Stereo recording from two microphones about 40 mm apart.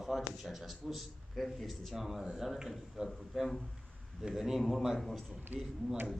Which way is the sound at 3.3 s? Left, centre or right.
Centre.